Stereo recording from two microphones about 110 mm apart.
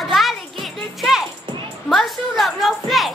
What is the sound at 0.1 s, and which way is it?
Music, centre (ahead or behind).